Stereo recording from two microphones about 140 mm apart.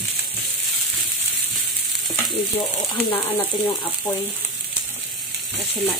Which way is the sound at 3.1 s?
15° left (ahead or behind).